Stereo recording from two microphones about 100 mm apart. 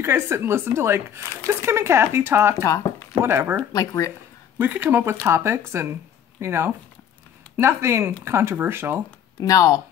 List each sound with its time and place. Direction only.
0.0 s speech: 25° right (ahead or behind)
2.6 s a sound: 30° left (ahead or behind)
3.2 s speech: 20° right (ahead or behind)
3.7 s speech: 35° left (ahead or behind)
4.6 s speech: 20° right (ahead or behind)
9.4 s speech: 35° left (ahead or behind)